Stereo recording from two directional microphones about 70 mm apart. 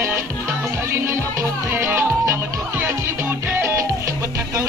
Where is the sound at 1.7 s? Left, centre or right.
Right.